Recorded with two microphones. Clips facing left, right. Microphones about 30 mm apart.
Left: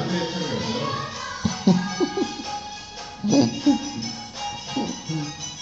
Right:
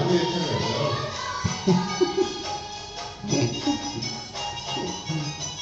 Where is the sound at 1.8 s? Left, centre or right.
Right.